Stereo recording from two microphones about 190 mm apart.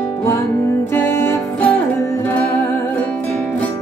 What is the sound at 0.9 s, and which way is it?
Music, 10° left (ahead or behind).